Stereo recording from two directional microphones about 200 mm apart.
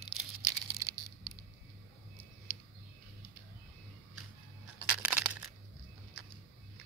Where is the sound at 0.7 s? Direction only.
15° right (ahead or behind).